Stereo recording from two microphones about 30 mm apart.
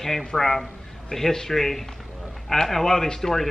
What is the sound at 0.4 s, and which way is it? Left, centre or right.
A man's voice, centre.